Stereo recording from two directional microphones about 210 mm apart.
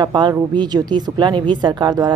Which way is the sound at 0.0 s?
20° right (ahead or behind).